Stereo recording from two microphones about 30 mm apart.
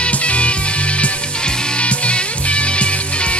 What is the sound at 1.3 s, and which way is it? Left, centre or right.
Music, left.